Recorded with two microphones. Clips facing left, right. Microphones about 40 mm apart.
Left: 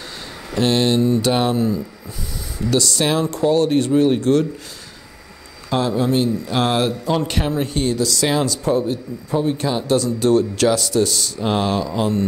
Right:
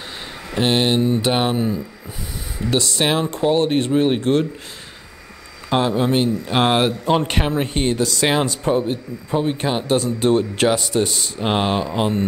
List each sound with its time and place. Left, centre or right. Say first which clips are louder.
0.5 s speech: left 1 dB; right
5.7 s speech: right 1 dB; right